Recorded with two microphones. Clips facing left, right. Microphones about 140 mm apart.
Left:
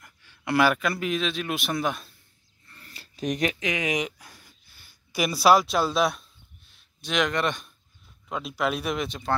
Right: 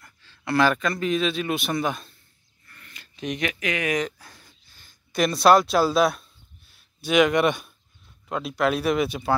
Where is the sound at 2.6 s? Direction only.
30° left (ahead or behind).